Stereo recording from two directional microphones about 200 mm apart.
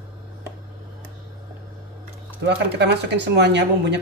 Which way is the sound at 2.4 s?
60° right (ahead or behind).